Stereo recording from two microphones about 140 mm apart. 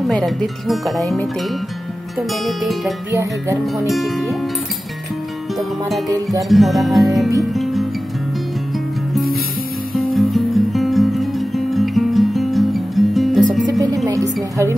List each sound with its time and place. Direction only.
0.0 s speech: centre (ahead or behind)
3.1 s music: 20° right (ahead or behind)
3.8 s speech: centre (ahead or behind)
5.6 s speech: centre (ahead or behind)
7.5 s music: centre (ahead or behind)
9.1 s music: centre (ahead or behind)
13.7 s music: 25° right (ahead or behind)